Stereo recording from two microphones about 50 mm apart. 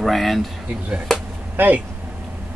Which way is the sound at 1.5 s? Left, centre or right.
Right.